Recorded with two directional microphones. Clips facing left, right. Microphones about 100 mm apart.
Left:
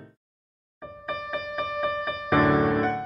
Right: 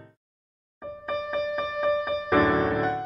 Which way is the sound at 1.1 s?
Centre (ahead or behind).